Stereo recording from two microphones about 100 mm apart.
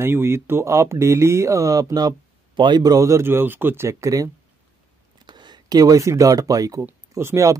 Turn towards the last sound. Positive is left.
turn(degrees=-30)  # may be behind; listen again after turning